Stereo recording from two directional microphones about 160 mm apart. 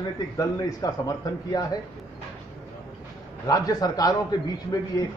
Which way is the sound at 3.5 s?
25° left (ahead or behind).